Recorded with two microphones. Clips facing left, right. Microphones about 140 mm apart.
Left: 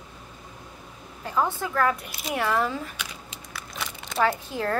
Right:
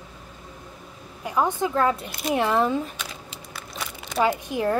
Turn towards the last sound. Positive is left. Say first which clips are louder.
# right 3 dB
turn(degrees=-15)  # may be behind; listen again after turning